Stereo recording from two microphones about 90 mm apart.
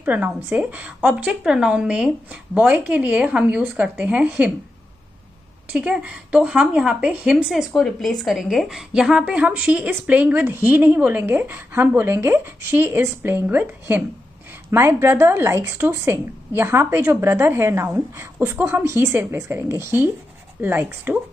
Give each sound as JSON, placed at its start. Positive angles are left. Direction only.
{"t": 0.0, "sound": "a woman's voice", "side_deg": -20}
{"t": 5.7, "sound": "a woman's voice", "side_deg": -10}
{"t": 7.7, "sound": "a woman's voice", "side_deg": 5}
{"t": 14.7, "sound": "a woman's voice", "side_deg": -30}
{"t": 18.9, "sound": "a woman's voice", "side_deg": -30}